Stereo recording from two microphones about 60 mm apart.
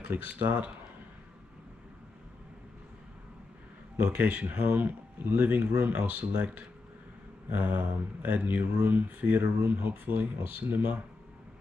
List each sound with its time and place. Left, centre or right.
0.0 s speech: right
4.0 s speech: right